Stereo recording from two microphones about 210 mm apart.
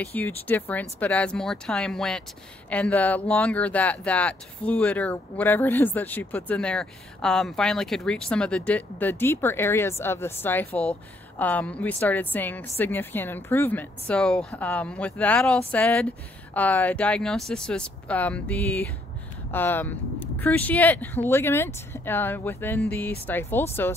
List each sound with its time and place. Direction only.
0.0 s speech: 10° left (ahead or behind)